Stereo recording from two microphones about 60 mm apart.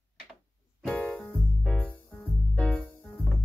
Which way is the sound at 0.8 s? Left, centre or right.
Centre.